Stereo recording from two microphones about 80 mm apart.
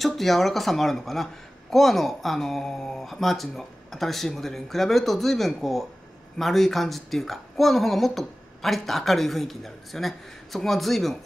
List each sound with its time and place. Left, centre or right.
0.0 s speech: centre